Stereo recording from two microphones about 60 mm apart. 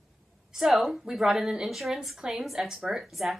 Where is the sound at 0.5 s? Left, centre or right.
Centre.